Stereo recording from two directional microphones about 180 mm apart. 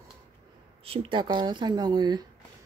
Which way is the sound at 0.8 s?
30° right (ahead or behind).